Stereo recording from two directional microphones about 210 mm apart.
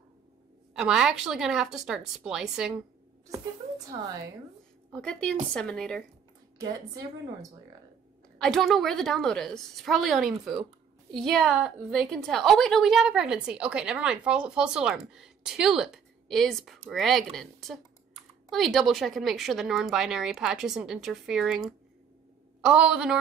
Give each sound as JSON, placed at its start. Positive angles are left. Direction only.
{"t": 0.7, "sound": "a woman's voice", "side_deg": 0}
{"t": 3.3, "sound": "a woman's voice", "side_deg": -15}
{"t": 4.9, "sound": "a woman's voice", "side_deg": 5}
{"t": 8.4, "sound": "a woman's voice", "side_deg": 0}